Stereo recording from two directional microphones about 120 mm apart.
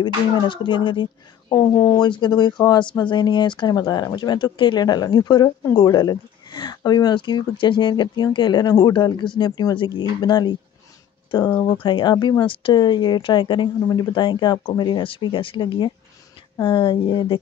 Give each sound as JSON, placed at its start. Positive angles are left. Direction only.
{"t": 0.0, "sound": "speech", "side_deg": 40}